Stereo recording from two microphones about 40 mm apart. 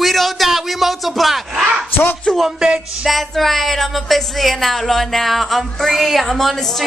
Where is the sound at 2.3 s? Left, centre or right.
Left.